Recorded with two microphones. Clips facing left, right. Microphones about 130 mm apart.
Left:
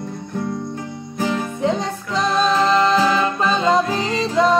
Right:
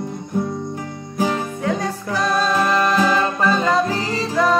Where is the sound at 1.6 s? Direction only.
25° left (ahead or behind).